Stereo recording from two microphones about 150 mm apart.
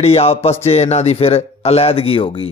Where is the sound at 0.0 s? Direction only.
40° left (ahead or behind).